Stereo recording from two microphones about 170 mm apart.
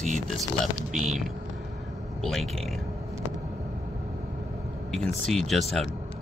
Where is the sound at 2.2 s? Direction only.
Centre (ahead or behind).